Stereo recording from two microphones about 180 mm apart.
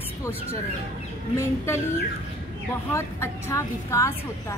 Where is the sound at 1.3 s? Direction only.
15° left (ahead or behind).